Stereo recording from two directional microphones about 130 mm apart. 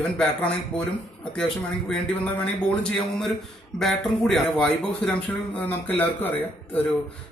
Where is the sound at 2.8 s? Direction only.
5° left (ahead or behind).